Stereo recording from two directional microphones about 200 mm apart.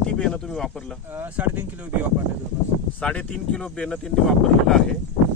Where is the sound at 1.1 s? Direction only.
10° right (ahead or behind).